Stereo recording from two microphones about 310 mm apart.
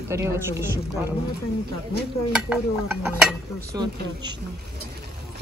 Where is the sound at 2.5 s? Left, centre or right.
Centre.